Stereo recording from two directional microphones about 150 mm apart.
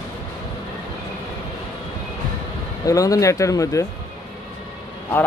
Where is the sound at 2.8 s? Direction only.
25° left (ahead or behind).